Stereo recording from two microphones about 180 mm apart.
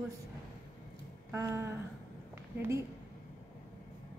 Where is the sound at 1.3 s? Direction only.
15° right (ahead or behind).